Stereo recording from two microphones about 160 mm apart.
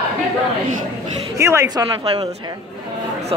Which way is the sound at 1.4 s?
20° right (ahead or behind).